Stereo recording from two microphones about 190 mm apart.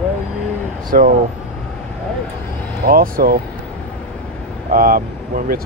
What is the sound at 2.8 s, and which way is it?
Speech, 50° right (ahead or behind).